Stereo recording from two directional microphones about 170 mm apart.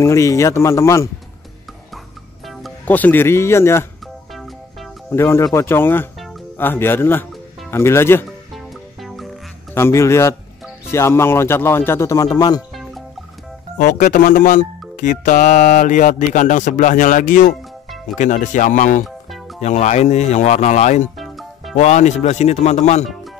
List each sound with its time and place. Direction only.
0.0 s speech: 15° left (ahead or behind)
2.4 s speech: 5° left (ahead or behind)
5.1 s speech: 15° left (ahead or behind)
8.5 s music: centre (ahead or behind)
9.8 s speech: 15° left (ahead or behind)
13.7 s speech: 45° left (ahead or behind)
21.2 s music: centre (ahead or behind)
21.7 s speech: 40° left (ahead or behind)